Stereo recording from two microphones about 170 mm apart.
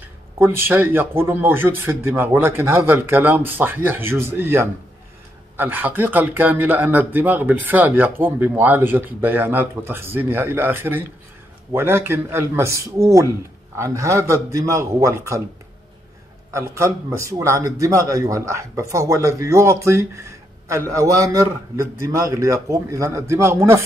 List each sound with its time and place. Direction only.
0.4 s speech: 15° right (ahead or behind)
16.5 s a man's voice: 15° right (ahead or behind)